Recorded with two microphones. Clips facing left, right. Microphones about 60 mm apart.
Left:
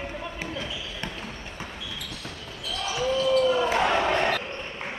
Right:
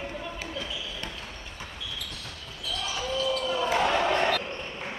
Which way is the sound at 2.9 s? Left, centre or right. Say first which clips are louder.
Left 7 dB; centre.